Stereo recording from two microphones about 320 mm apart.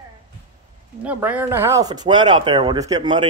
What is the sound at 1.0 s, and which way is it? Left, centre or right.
Speech, centre.